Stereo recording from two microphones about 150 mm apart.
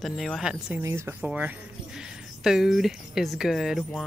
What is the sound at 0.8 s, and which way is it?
Speech, 15° right (ahead or behind).